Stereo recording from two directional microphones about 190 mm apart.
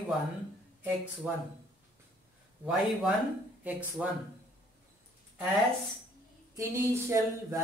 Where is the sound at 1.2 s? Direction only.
5° right (ahead or behind).